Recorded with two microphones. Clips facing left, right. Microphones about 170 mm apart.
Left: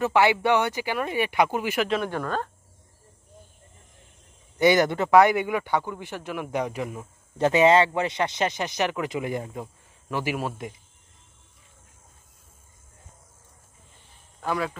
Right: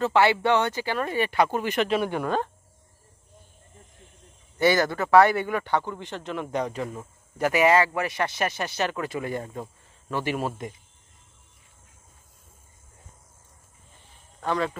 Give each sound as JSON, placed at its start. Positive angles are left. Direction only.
{"t": 0.0, "sound": "speech", "side_deg": 15}
{"t": 1.9, "sound": "speech", "side_deg": -10}
{"t": 4.6, "sound": "speech", "side_deg": 20}
{"t": 7.3, "sound": "speech", "side_deg": 25}
{"t": 14.4, "sound": "speech", "side_deg": 5}